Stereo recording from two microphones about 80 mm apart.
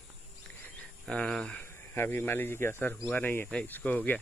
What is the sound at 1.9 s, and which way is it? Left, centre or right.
Speech, left.